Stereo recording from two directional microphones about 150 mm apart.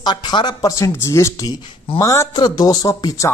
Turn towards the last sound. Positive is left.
turn(degrees=20)  # may be behind; listen again after turning